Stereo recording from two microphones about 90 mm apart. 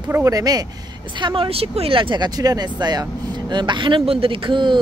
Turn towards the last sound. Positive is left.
turn(degrees=-65)  # may be behind; listen again after turning